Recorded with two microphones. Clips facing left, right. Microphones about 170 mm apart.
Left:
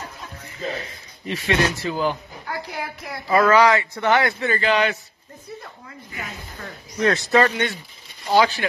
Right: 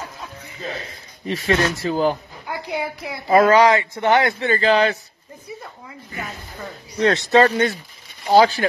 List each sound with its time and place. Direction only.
1.2 s speech: 40° right (ahead or behind)
2.8 s a woman's voice: 15° right (ahead or behind)
3.3 s speech: 25° right (ahead or behind)
7.0 s speech: 30° right (ahead or behind)